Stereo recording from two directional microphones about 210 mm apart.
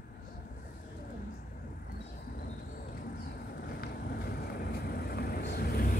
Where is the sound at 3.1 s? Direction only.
45° left (ahead or behind).